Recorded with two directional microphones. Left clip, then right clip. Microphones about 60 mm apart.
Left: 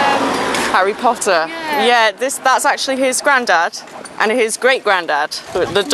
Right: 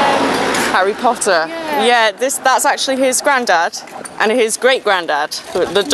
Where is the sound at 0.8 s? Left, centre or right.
Centre.